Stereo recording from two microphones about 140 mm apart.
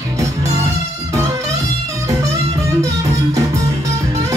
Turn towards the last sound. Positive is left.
turn(degrees=-25)  # may be behind; listen again after turning